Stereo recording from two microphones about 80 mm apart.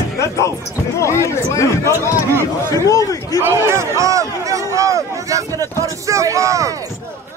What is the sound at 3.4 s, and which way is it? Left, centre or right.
Speech, right.